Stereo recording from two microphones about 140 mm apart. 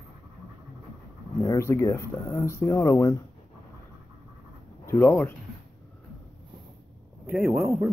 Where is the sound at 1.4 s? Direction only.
20° left (ahead or behind).